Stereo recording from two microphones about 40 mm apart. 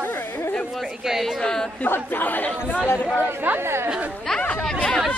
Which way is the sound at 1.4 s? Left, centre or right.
Centre.